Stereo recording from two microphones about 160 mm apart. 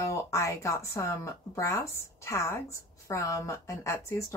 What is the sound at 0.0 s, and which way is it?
Speech, 20° left (ahead or behind).